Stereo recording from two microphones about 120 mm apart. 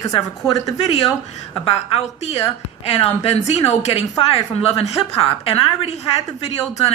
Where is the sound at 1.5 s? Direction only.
50° left (ahead or behind).